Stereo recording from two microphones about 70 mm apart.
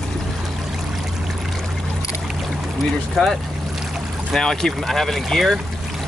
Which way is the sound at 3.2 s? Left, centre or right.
Centre.